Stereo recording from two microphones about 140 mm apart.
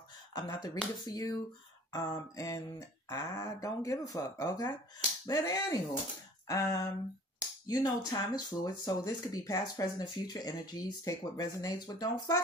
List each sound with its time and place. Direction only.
0.3 s speech: 30° left (ahead or behind)